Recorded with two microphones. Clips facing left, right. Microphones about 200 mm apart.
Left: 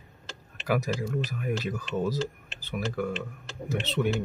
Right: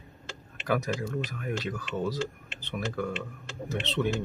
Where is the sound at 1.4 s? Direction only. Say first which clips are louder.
Left 2 dB; 10° left (ahead or behind).